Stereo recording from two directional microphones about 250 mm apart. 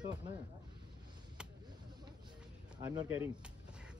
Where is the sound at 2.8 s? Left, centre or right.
Centre.